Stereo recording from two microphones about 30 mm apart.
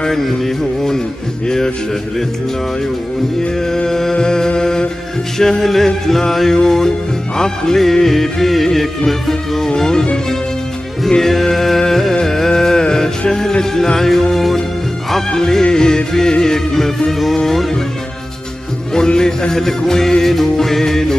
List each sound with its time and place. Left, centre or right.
3.7 s music: centre
5.4 s music: centre
7.9 s music: centre
9.0 s music: centre
11.1 s music: centre
12.4 s a sound: centre
13.3 s music: left
13.9 s music: centre
15.3 s music: centre
19.1 s music: left